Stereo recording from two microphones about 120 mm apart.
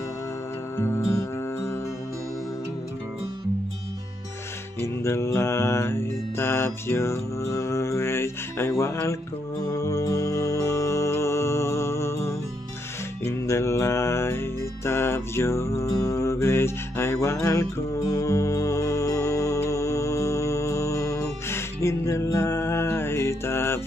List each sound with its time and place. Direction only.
0.7 s music: 20° left (ahead or behind)
4.7 s mantra: 20° left (ahead or behind)
9.7 s music: 25° left (ahead or behind)